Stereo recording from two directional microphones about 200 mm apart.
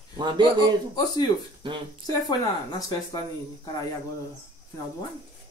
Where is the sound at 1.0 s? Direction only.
20° left (ahead or behind).